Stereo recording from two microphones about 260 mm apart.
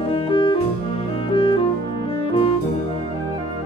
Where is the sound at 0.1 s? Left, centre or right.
Centre.